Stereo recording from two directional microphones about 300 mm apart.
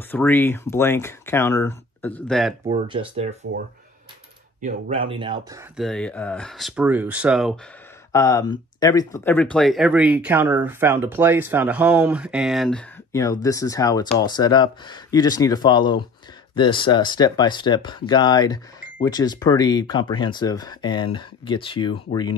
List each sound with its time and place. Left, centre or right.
0.1 s speech: centre
2.6 s speech: centre
4.6 s speech: right
5.8 s speech: centre
8.1 s speech: centre